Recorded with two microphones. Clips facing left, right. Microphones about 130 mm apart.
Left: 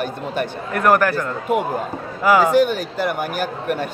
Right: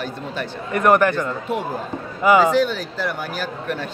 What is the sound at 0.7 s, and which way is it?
Speech, centre (ahead or behind).